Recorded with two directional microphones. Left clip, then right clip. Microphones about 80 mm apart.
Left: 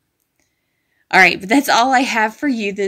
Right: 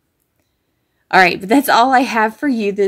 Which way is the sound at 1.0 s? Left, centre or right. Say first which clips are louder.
Even; right.